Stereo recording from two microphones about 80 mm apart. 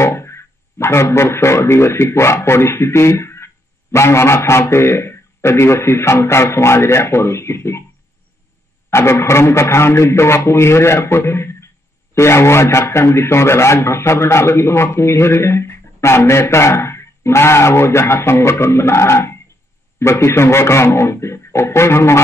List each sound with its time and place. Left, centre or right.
0.0 s a man's voice: left
8.9 s a man's voice: left